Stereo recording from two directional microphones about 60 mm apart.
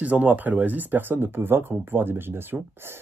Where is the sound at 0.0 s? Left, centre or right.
Right.